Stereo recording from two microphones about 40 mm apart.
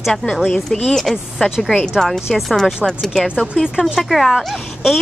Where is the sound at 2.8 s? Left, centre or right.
Centre.